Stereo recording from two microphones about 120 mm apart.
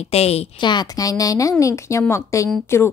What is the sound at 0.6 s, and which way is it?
Speech, 40° left (ahead or behind).